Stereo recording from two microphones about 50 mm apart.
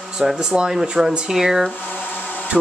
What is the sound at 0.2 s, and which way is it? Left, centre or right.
Speech, centre.